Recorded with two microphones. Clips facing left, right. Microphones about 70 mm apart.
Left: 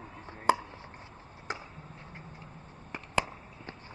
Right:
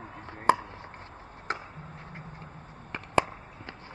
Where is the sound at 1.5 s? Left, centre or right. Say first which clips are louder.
Right 4 dB; right.